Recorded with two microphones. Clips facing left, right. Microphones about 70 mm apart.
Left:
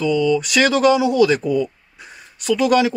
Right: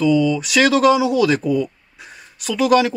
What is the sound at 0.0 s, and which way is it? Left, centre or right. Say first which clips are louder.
Speech: right 1 dB; centre.